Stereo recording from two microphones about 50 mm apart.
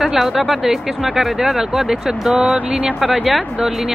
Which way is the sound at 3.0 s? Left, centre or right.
Centre.